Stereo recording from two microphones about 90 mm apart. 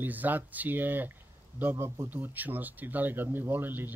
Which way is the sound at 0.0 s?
20° right (ahead or behind).